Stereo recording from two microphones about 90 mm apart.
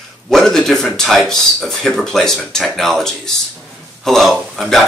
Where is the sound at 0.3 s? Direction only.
5° left (ahead or behind).